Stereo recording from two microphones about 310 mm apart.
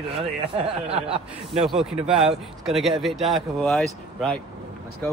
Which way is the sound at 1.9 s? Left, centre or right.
Centre.